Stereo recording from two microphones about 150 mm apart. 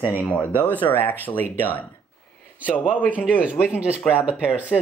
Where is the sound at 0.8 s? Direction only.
25° left (ahead or behind).